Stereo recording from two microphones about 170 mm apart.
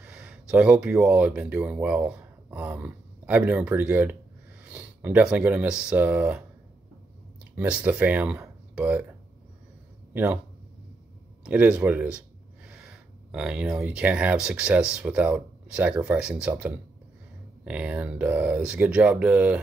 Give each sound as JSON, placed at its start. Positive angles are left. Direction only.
{"t": 0.0, "sound": "speech", "side_deg": -5}
{"t": 7.5, "sound": "speech", "side_deg": -10}
{"t": 10.1, "sound": "speech", "side_deg": -10}
{"t": 11.4, "sound": "speech", "side_deg": -5}